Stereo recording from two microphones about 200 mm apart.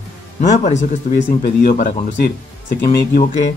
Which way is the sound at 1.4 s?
50° left (ahead or behind).